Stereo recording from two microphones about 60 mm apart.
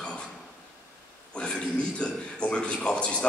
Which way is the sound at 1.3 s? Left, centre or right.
Centre.